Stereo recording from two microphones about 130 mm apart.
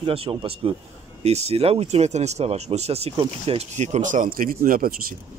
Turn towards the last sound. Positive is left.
turn(degrees=-90)